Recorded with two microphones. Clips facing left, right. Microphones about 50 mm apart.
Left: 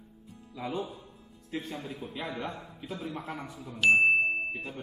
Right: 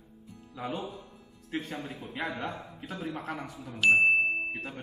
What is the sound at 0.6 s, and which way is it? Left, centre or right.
A man's voice, right.